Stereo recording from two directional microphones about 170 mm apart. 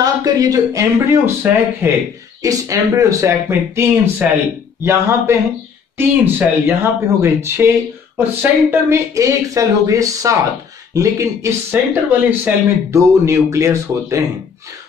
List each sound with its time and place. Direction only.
0.0 s speech: 20° right (ahead or behind)